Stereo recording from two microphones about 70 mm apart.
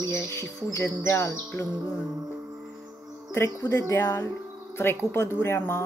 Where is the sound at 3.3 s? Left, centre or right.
Left.